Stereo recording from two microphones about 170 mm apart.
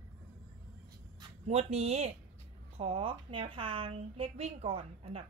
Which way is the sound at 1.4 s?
40° right (ahead or behind).